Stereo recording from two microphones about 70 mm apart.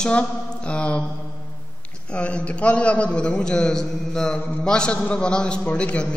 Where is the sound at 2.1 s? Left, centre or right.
Centre.